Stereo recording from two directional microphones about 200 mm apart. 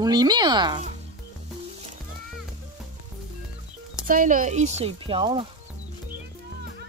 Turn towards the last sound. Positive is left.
turn(degrees=-25)  # may be behind; listen again after turning